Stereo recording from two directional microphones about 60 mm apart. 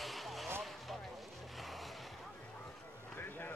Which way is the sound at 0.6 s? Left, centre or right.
Centre.